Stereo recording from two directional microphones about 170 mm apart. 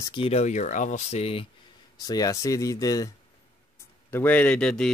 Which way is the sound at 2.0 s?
20° left (ahead or behind).